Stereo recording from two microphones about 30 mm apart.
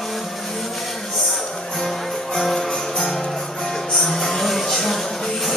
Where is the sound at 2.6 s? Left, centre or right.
Centre.